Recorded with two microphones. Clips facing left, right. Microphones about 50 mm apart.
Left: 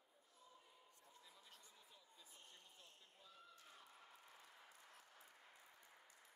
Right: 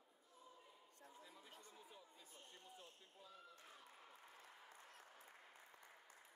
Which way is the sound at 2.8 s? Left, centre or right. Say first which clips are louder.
Right 4 dB; centre.